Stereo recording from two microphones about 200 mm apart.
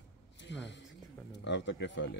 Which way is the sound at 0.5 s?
65° left (ahead or behind).